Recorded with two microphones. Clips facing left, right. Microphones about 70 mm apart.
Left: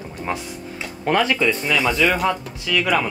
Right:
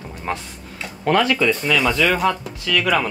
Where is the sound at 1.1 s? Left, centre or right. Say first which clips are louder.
Right 1 dB; left.